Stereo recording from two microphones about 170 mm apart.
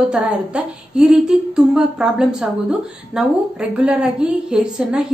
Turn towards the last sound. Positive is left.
turn(degrees=-5)  # may be behind; listen again after turning